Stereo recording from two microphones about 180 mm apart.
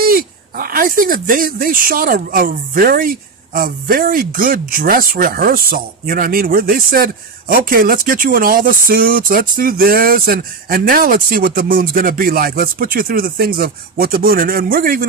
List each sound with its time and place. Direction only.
0.0 s speech: 55° right (ahead or behind)